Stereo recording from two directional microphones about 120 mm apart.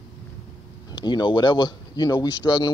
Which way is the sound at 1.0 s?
40° left (ahead or behind).